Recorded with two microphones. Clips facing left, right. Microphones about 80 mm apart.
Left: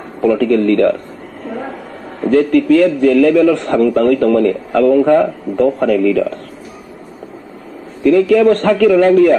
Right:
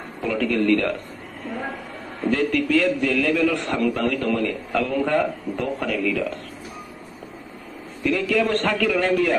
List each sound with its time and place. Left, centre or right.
0.2 s a man's voice: left
1.4 s train: left
2.2 s a man's voice: left
8.0 s a man's voice: left